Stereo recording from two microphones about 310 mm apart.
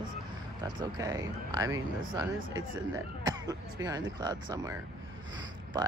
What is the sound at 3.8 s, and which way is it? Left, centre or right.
Speech, centre.